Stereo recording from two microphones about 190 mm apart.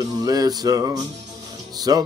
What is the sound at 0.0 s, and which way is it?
Music, 20° right (ahead or behind).